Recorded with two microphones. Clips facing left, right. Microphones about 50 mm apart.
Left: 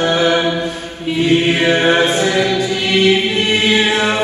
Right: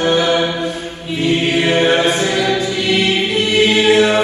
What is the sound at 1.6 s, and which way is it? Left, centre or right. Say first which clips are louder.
Mantra: left 1 dB; left.